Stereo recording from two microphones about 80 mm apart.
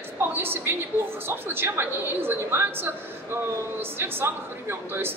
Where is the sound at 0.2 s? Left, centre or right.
Right.